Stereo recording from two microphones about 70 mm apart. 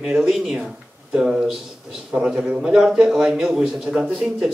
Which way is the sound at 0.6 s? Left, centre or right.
Centre.